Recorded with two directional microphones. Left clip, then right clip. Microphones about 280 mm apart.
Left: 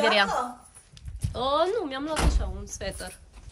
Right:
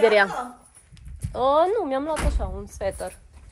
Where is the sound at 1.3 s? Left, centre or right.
Centre.